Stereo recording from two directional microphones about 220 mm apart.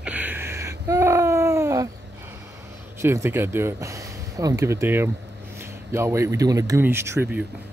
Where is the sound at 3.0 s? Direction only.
10° right (ahead or behind).